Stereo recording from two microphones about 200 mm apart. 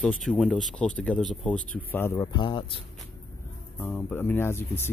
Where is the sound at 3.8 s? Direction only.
5° left (ahead or behind).